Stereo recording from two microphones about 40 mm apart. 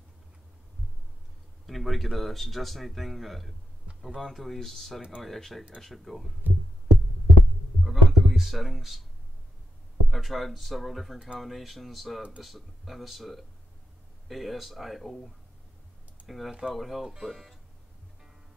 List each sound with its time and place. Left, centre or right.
1.7 s speech: centre
6.4 s music: right
7.8 s speech: centre
10.0 s speech: centre